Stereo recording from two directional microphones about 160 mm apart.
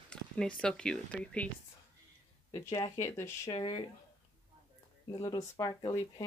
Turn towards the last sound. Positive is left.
turn(degrees=25)  # may be behind; listen again after turning